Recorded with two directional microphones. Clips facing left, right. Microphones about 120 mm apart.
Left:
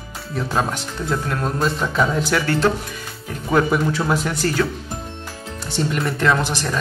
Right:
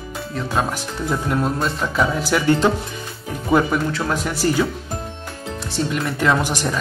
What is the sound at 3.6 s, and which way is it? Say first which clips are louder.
Speech: left 2 dB; 5° left (ahead or behind).